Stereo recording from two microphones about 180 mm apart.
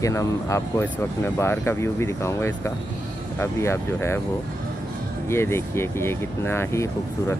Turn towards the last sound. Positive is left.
turn(degrees=15)  # may be behind; listen again after turning